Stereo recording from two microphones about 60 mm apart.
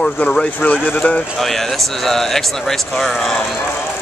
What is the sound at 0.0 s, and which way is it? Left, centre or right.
Speech, centre.